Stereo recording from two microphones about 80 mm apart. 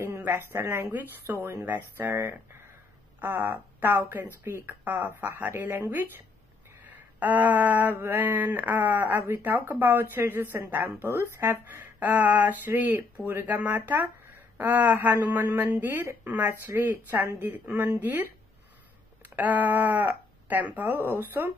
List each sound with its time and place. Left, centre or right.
0.0 s speech: right